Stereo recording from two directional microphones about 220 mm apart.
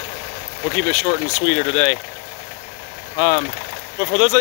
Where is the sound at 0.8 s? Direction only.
20° left (ahead or behind).